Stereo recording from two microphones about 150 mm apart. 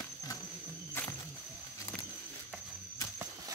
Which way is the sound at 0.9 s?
15° left (ahead or behind).